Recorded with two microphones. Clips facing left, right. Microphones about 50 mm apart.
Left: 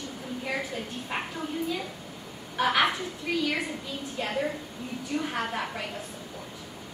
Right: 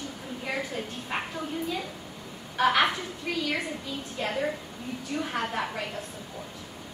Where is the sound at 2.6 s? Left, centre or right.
Centre.